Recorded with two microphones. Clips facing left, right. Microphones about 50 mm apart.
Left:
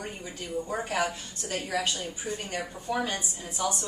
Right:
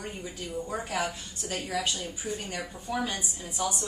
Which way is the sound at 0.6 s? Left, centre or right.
Centre.